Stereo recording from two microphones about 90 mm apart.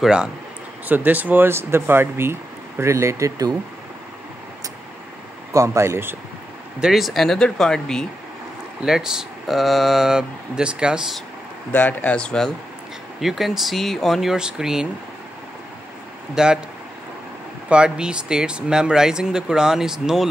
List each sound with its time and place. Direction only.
0.0 s speech: 10° right (ahead or behind)
0.8 s speech: 20° right (ahead or behind); by 3.5 s 40° right (ahead or behind)
5.5 s speech: 35° right (ahead or behind)
6.8 s speech: centre (ahead or behind)
8.8 s speech: 5° right (ahead or behind)
11.7 s speech: 20° left (ahead or behind)
13.2 s speech: 5° right (ahead or behind)
16.4 s speech: 10° right (ahead or behind)
17.6 s speech: 10° right (ahead or behind)